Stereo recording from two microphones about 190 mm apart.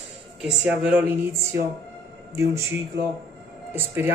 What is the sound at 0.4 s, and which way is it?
A woman's voice, centre (ahead or behind).